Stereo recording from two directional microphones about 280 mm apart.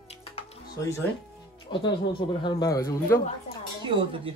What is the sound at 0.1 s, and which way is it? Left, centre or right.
Music, left.